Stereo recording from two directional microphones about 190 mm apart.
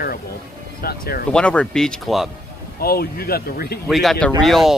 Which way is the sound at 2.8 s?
55° left (ahead or behind).